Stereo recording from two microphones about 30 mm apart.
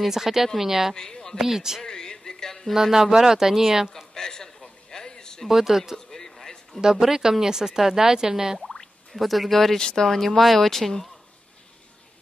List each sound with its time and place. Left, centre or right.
0.0 s speech: centre
0.9 s speech: centre
1.4 s speech: centre
1.9 s a sound: left
2.7 s speech: centre
3.9 s a sound: left
5.5 s speech: centre
5.9 s a sound: centre
6.8 s speech: centre
9.1 s speech: centre
9.8 s speech: left
10.0 s speech: centre